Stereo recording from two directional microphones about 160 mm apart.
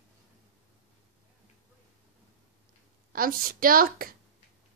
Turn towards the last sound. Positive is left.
turn(degrees=-65)  # may be behind; listen again after turning